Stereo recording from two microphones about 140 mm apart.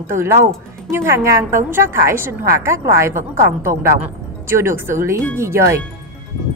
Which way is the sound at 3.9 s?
20° right (ahead or behind).